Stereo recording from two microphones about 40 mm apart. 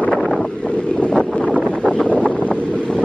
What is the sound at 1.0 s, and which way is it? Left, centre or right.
Wind noise, left.